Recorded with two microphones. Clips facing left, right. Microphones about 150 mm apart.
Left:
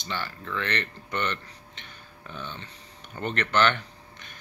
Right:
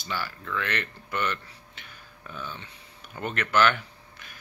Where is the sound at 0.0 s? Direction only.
5° right (ahead or behind).